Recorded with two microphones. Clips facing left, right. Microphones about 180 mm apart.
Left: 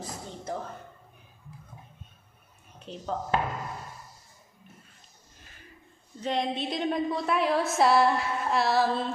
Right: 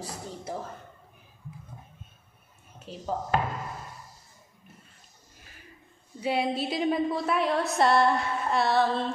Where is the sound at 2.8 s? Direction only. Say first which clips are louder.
Right 1 dB; 5° right (ahead or behind).